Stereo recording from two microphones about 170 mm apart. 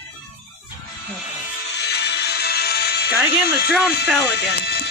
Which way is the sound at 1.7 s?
75° left (ahead or behind).